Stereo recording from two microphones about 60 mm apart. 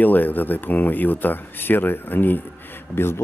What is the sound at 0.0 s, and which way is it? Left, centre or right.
Speech, left.